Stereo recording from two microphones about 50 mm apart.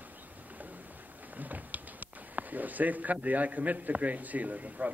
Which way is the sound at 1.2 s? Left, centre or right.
Right.